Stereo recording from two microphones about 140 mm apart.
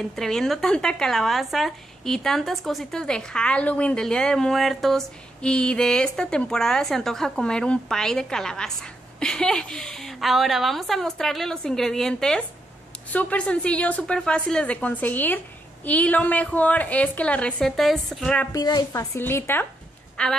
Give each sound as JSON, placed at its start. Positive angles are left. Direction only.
{"t": 0.0, "sound": "a woman's voice", "side_deg": 5}
{"t": 18.5, "sound": "a woman's voice", "side_deg": 30}